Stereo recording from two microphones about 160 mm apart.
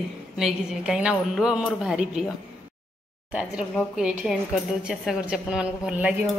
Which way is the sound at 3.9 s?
5° right (ahead or behind).